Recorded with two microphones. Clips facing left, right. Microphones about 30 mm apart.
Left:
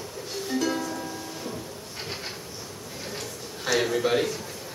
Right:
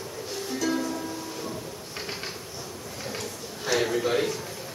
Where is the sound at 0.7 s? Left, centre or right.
Centre.